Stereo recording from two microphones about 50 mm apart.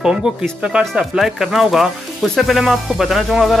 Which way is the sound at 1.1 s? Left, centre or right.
Centre.